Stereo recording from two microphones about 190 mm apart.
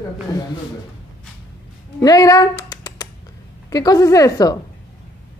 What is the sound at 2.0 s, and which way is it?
A woman's voice, 20° left (ahead or behind).